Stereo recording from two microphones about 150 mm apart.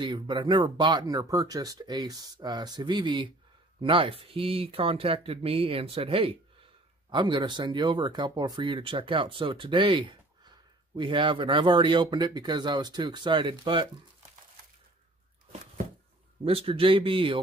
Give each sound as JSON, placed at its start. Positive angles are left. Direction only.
{"t": 0.0, "sound": "speech", "side_deg": -30}
{"t": 16.4, "sound": "speech", "side_deg": -40}